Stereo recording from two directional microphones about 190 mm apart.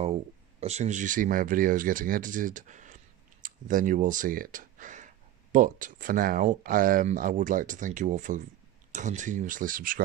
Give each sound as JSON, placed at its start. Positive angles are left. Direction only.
{"t": 0.0, "sound": "speech", "side_deg": -35}